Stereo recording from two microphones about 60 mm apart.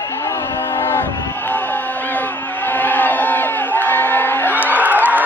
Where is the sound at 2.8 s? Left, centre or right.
Left.